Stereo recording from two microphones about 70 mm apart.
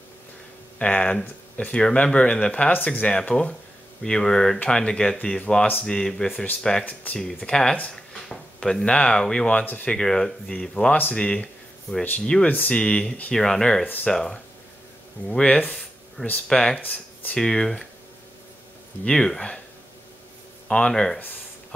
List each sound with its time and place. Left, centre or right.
0.7 s speech: centre
7.9 s a sound: centre
8.8 s speech: centre
9.9 s speech: centre
16.8 s speech: left
17.4 s speech: centre
19.0 s speech: centre
20.6 s speech: centre